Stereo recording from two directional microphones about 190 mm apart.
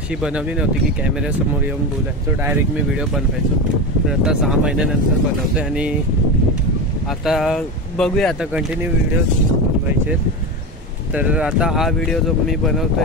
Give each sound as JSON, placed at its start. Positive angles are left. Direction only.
{"t": 4.1, "sound": "speech", "side_deg": -5}
{"t": 7.2, "sound": "speech", "side_deg": 0}
{"t": 11.1, "sound": "speech", "side_deg": -5}